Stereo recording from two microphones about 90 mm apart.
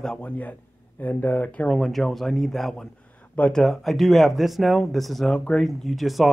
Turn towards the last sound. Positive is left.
turn(degrees=0)  # may be behind; listen again after turning